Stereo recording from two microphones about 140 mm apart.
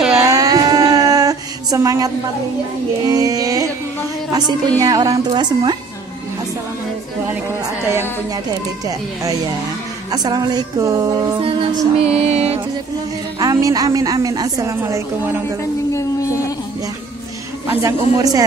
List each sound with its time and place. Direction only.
0.3 s a sound: 25° right (ahead or behind)
3.1 s a woman's voice: 25° right (ahead or behind)
7.8 s speech: 20° right (ahead or behind)
10.1 s a woman's voice: 30° right (ahead or behind)
11.4 s music: 40° right (ahead or behind)
13.4 s a woman's voice: 25° right (ahead or behind)
15.9 s a sound: 20° left (ahead or behind)
17.6 s a woman's voice: 25° right (ahead or behind)